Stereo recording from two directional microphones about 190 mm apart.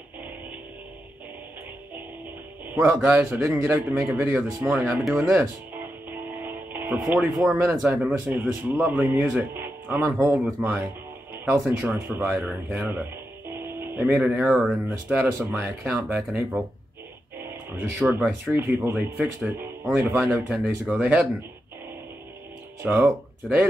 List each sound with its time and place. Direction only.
2.7 s a man's voice: 10° right (ahead or behind)
20.0 s speech: 10° right (ahead or behind)
22.8 s speech: 10° right (ahead or behind)